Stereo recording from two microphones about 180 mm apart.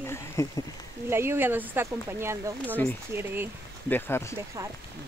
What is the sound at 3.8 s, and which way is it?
Speech, 10° left (ahead or behind).